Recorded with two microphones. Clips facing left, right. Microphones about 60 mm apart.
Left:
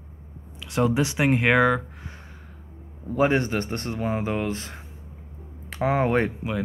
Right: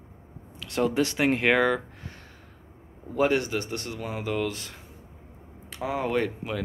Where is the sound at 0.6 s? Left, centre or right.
Centre.